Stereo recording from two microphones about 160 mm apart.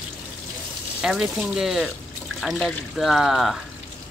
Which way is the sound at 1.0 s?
5° right (ahead or behind).